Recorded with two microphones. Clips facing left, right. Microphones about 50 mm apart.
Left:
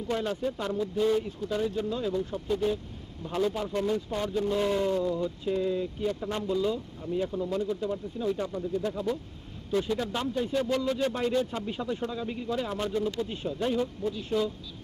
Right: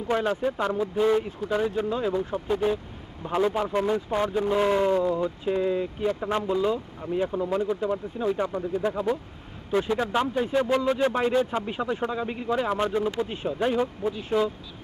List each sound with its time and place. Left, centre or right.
0.1 s speech: right